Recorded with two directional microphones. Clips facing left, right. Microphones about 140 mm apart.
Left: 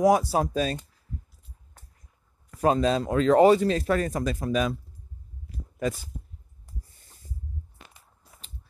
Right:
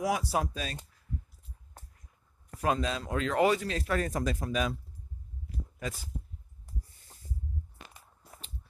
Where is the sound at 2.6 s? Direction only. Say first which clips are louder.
Left 8 dB; 35° left (ahead or behind).